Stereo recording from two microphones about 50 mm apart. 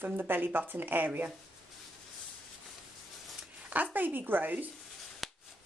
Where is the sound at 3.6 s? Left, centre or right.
Right.